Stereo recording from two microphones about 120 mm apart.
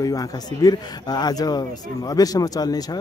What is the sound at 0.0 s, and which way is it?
Speech, 30° left (ahead or behind).